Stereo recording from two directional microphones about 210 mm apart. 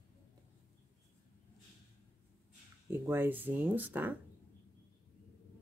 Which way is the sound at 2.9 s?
10° right (ahead or behind).